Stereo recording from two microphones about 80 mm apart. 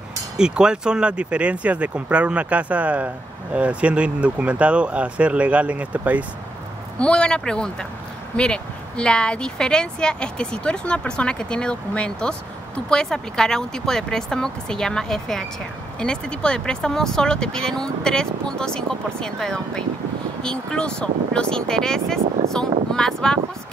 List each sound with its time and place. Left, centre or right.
0.4 s speech: centre
7.0 s speech: centre